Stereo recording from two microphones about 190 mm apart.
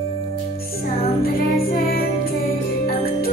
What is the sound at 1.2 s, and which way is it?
Music, 50° left (ahead or behind).